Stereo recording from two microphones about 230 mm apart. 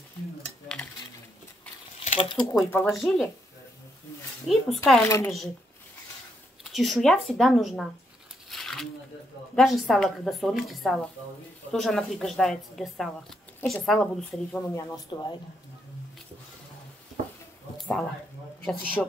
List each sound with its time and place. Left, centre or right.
2.0 s speech: left
2.7 s a woman's voice: centre
4.5 s a woman's voice: centre
5.0 s speech: centre
6.6 s a woman's voice: centre
8.5 s a sound: centre
9.6 s a woman's voice: centre
14.8 s speech: centre
17.7 s a sound: centre
18.6 s speech: centre